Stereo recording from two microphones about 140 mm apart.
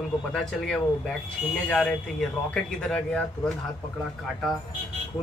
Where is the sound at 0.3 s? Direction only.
5° left (ahead or behind).